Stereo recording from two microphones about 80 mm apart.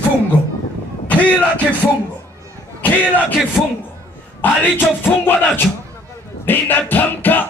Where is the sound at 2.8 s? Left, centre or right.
Left.